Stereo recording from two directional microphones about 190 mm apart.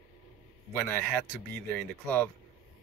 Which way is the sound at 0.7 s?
10° left (ahead or behind).